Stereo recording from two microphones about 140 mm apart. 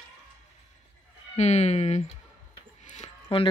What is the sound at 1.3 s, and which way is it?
Music, 50° left (ahead or behind).